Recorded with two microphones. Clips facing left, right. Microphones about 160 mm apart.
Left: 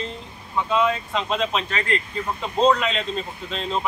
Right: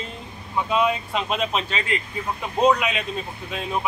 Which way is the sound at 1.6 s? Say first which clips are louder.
Left 2 dB; 20° right (ahead or behind).